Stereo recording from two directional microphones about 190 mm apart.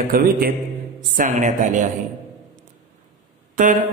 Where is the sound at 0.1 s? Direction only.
50° right (ahead or behind).